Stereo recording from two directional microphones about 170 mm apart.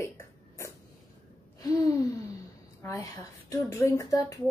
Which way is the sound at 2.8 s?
20° left (ahead or behind).